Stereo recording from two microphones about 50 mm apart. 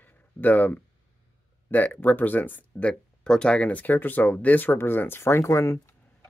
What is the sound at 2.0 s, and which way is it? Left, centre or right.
Speech, left.